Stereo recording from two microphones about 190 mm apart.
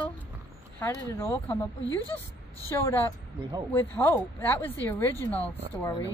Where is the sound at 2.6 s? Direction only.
15° left (ahead or behind).